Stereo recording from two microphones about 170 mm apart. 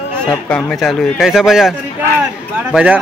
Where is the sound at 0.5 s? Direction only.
Centre (ahead or behind).